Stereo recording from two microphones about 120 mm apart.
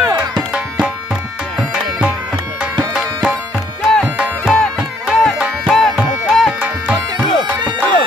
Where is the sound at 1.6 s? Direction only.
10° right (ahead or behind).